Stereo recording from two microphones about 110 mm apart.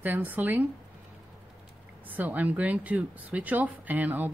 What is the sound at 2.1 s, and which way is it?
Speech, 15° right (ahead or behind).